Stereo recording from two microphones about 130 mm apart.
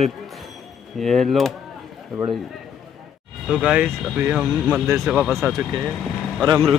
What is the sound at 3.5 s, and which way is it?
Speech, 5° right (ahead or behind).